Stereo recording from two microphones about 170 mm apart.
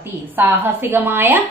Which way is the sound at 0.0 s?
10° right (ahead or behind).